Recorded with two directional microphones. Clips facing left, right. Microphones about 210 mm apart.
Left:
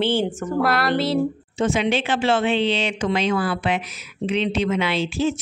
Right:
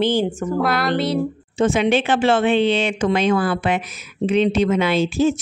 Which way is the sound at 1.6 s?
50° right (ahead or behind).